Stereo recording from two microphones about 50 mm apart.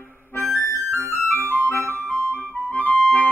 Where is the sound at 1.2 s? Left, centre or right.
Left.